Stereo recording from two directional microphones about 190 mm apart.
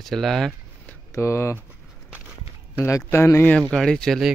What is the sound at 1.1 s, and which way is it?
Speech, 15° left (ahead or behind).